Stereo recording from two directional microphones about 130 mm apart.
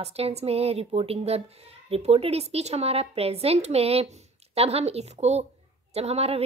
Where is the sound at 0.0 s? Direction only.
50° right (ahead or behind).